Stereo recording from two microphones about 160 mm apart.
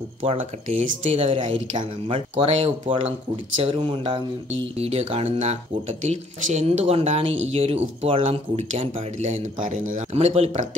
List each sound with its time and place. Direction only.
0.2 s speech: 45° right (ahead or behind)
10.1 s speech: 40° right (ahead or behind)